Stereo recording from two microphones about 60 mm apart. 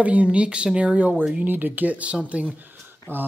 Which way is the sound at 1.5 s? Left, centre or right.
Right.